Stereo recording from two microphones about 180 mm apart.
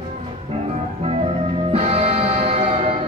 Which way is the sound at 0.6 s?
35° right (ahead or behind).